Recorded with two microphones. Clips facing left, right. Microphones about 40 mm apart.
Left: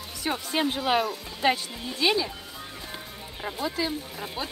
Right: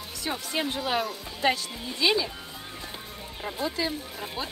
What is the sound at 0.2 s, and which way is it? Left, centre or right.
Speech, centre.